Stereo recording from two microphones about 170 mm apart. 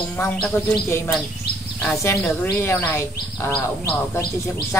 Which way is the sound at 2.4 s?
15° left (ahead or behind).